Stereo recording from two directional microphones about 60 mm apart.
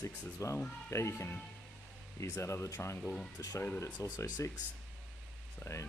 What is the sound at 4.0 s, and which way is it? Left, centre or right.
Speech, left.